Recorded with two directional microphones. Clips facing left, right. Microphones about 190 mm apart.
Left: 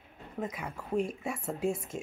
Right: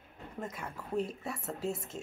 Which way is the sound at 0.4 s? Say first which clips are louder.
Left 4 dB; 5° left (ahead or behind).